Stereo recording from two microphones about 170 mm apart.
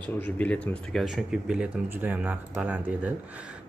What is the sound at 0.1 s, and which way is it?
Speech, 10° left (ahead or behind).